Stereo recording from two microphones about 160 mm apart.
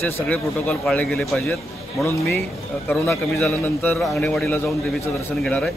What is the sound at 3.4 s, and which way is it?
A man's voice, 10° left (ahead or behind).